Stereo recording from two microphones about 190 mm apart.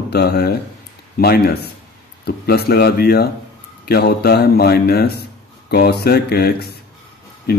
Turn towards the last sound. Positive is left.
turn(degrees=55)  # may be behind; listen again after turning